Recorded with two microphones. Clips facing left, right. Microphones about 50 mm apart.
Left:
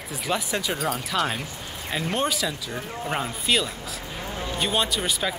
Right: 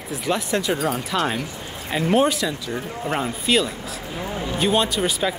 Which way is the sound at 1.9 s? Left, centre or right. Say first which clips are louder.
Right 7 dB; centre.